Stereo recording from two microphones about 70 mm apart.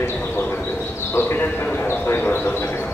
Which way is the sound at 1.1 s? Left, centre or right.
Left.